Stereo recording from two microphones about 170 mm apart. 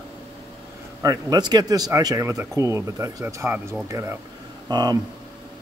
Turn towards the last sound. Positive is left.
turn(degrees=-25)  # may be behind; listen again after turning